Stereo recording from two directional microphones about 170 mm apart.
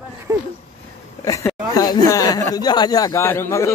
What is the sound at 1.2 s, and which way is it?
Speech, 20° left (ahead or behind).